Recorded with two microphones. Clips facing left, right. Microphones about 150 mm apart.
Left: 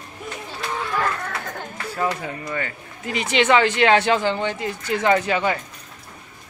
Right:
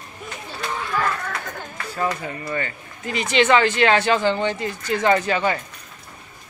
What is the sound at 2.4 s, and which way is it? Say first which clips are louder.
Speech: right 1 dB; 5° left (ahead or behind).